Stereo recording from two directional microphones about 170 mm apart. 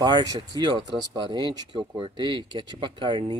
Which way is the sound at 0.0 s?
25° right (ahead or behind).